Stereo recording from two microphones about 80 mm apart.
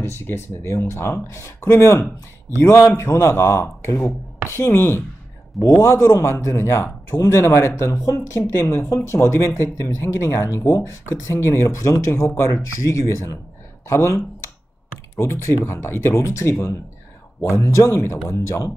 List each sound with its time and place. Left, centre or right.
0.0 s speech: left
5.8 s speech: left